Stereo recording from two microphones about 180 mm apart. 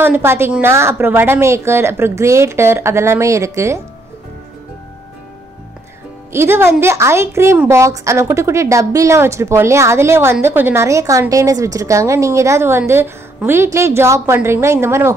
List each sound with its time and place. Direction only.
0.0 s a woman's voice: 10° right (ahead or behind)
6.3 s a woman's voice: 15° right (ahead or behind)